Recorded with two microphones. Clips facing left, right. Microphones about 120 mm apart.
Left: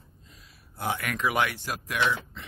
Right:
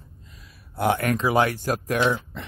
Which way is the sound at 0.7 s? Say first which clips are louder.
Right 9 dB; 65° right (ahead or behind).